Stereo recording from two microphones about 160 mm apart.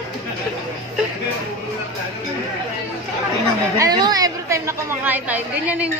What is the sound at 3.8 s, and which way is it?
A woman's voice, 25° right (ahead or behind).